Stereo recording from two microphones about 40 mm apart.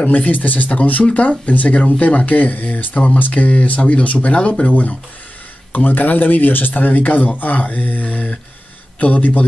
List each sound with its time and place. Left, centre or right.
0.0 s speech: left
5.9 s speech: left